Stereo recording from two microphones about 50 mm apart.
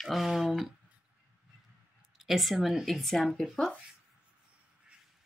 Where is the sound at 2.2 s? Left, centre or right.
Centre.